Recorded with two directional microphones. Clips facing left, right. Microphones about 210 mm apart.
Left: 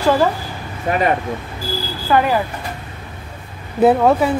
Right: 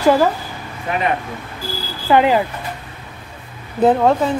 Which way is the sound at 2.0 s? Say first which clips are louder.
Right 2 dB; 20° right (ahead or behind).